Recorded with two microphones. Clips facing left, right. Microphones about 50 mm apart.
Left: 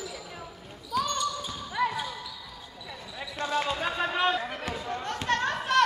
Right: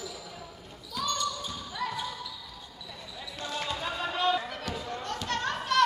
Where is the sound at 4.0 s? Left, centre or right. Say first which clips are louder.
Left 1 dB; left.